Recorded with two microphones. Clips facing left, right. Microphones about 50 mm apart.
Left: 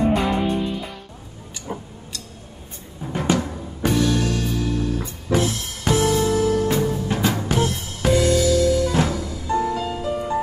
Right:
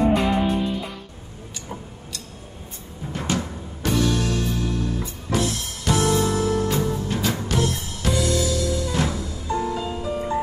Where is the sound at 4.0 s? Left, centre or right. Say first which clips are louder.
Left 1 dB; centre.